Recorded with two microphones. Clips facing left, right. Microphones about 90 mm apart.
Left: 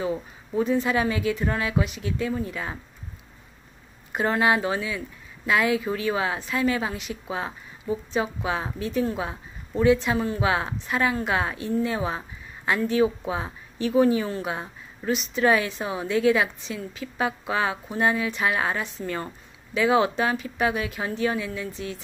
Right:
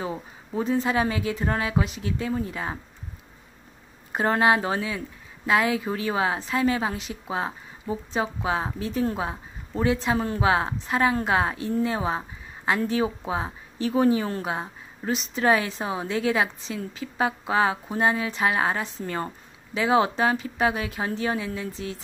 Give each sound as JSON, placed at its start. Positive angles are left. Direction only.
{"t": 0.0, "sound": "speech", "side_deg": -30}
{"t": 4.1, "sound": "a woman's voice", "side_deg": -35}